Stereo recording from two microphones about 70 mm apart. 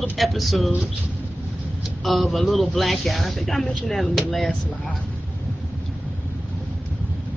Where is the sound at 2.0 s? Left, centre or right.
Centre.